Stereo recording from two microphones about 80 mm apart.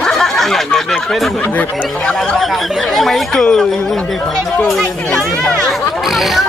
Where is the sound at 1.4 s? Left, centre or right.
Left.